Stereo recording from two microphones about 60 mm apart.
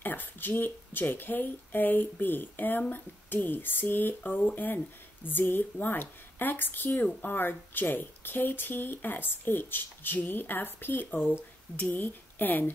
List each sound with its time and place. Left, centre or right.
0.0 s speech: left